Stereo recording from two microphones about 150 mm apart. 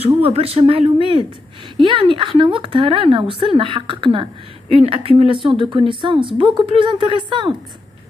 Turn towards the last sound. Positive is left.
turn(degrees=-30)  # may be behind; listen again after turning